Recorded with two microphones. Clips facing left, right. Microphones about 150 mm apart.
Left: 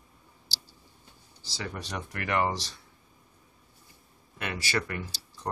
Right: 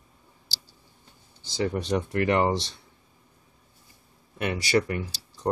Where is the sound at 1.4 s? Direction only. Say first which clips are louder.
Right 10 dB; 25° right (ahead or behind).